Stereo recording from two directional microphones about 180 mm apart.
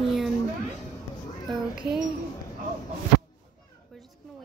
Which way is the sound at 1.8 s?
5° right (ahead or behind).